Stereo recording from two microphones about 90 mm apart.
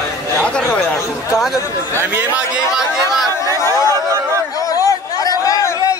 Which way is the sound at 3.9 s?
35° right (ahead or behind).